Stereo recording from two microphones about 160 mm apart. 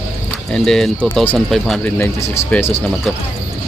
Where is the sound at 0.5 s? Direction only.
5° left (ahead or behind).